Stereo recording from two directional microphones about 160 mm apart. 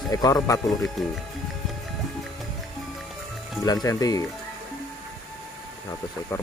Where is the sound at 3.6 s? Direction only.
25° left (ahead or behind).